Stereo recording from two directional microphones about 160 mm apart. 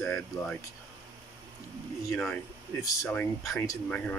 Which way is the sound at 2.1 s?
10° left (ahead or behind).